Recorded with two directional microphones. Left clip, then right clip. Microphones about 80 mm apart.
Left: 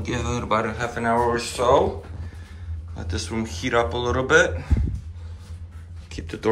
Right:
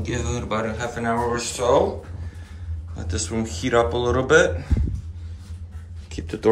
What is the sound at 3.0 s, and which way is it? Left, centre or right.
Speech, right.